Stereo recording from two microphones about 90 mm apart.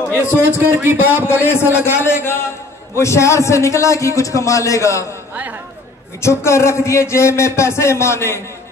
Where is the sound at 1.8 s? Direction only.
25° left (ahead or behind).